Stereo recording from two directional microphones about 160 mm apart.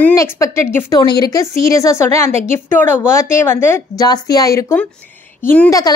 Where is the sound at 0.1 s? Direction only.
20° left (ahead or behind).